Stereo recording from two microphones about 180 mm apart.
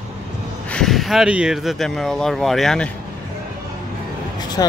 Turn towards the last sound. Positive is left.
turn(degrees=20)  # may be behind; listen again after turning